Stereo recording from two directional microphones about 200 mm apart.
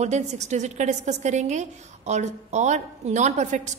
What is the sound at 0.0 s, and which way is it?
A woman's voice, 35° right (ahead or behind).